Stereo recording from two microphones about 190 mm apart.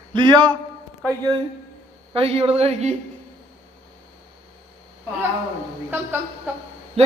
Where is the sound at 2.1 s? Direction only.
30° right (ahead or behind).